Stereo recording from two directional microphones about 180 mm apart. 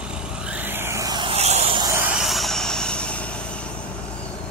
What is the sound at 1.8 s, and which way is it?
Vehicle, 15° right (ahead or behind).